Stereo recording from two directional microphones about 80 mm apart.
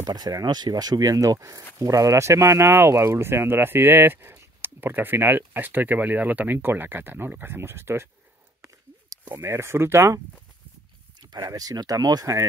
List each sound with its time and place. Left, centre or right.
0.0 s speech: right
8.6 s a sound: right
9.4 s speech: right
11.1 s speech: right